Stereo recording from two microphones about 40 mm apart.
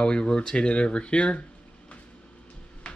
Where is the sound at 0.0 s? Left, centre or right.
Left.